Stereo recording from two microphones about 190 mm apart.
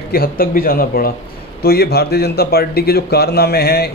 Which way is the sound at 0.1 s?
50° left (ahead or behind).